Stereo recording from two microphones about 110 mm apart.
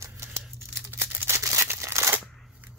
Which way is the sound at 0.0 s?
25° right (ahead or behind).